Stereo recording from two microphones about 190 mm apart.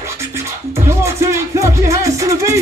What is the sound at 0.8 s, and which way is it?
Music, 15° right (ahead or behind).